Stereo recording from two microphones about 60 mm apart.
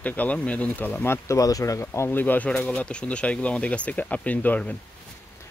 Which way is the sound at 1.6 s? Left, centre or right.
Left.